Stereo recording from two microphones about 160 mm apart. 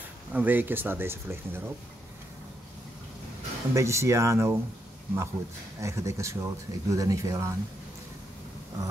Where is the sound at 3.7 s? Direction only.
20° right (ahead or behind).